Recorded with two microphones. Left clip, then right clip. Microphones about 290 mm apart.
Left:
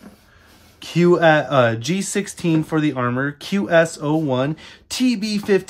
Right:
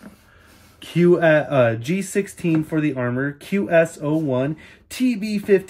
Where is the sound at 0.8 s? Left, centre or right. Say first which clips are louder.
Left 2 dB; centre.